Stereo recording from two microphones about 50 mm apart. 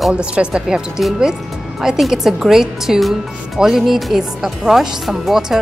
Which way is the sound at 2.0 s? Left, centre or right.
Centre.